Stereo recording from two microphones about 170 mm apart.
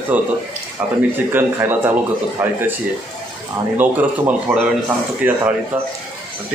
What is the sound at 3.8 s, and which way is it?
A man's voice, 10° right (ahead or behind).